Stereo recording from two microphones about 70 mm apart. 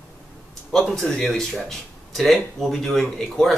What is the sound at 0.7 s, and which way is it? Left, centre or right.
Speech, centre.